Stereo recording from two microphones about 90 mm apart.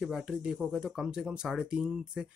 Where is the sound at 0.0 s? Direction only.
5° right (ahead or behind).